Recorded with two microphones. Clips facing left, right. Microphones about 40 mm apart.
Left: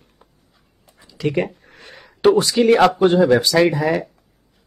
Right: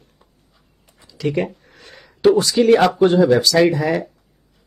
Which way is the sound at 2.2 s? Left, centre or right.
Left.